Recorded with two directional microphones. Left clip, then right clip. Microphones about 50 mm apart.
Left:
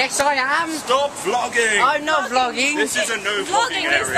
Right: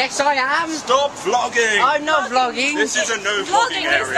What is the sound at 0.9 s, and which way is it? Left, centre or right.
Speech, right.